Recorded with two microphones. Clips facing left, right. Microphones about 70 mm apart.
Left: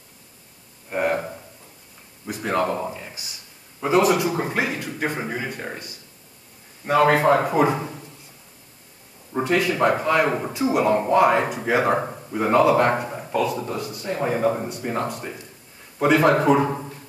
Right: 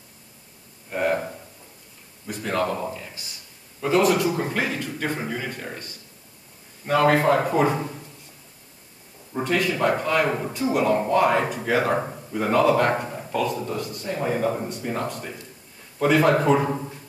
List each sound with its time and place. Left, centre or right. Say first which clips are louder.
0.8 s a sound: left 1 dB; centre
2.2 s a man's voice: left 2 dB; centre
9.3 s a man's voice: left 2 dB; centre